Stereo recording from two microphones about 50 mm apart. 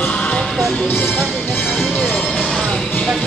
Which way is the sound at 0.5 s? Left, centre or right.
Centre.